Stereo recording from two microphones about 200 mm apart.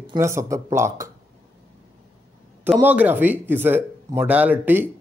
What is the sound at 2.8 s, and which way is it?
Speech, 10° right (ahead or behind).